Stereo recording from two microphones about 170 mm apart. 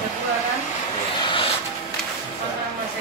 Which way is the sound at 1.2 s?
30° left (ahead or behind).